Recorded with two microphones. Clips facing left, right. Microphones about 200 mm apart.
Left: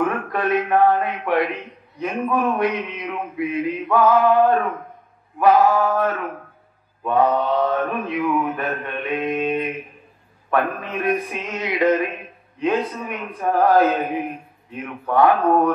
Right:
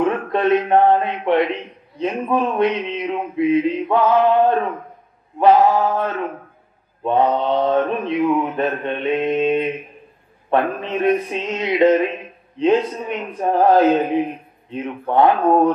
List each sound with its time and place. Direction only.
0.0 s speech: 25° right (ahead or behind)